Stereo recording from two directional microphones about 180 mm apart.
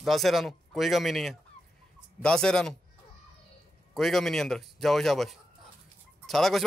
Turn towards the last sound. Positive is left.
turn(degrees=0)  # may be behind; listen again after turning